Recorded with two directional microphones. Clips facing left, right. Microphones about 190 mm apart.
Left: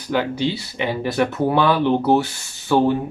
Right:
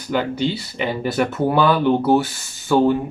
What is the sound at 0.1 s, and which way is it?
Speech, centre (ahead or behind).